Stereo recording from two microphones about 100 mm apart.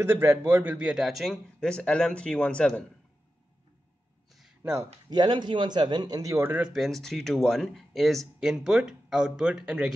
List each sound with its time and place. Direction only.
0.0 s a man's voice: 25° right (ahead or behind)
0.7 s speech: 5° right (ahead or behind)
1.6 s speech: 10° left (ahead or behind)
5.1 s a man's voice: 45° right (ahead or behind)
6.4 s speech: 15° right (ahead or behind)
6.7 s speech: centre (ahead or behind)